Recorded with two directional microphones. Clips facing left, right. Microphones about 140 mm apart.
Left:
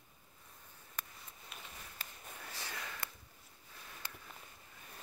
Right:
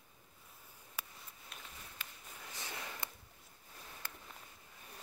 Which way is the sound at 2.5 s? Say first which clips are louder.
Right 1 dB; 20° right (ahead or behind).